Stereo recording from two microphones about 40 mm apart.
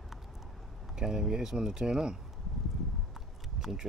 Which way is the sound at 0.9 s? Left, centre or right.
Centre.